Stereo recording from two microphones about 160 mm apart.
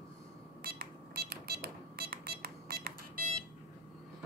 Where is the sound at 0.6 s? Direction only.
75° right (ahead or behind).